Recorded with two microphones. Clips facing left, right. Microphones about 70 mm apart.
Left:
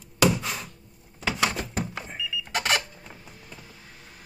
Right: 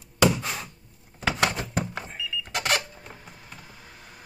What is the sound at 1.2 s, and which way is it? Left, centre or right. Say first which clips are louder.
Thunk: right 1 dB; right.